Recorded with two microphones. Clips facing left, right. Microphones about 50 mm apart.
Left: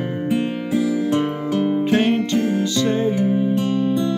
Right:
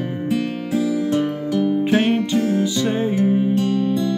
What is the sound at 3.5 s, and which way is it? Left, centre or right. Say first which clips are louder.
Music: even; centre.